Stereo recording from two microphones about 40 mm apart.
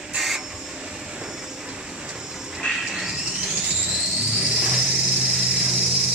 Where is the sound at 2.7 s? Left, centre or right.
Centre.